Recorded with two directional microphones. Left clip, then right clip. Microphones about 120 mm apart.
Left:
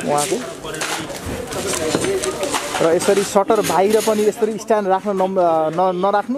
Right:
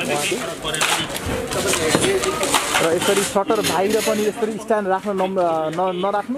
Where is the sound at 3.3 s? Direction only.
45° left (ahead or behind).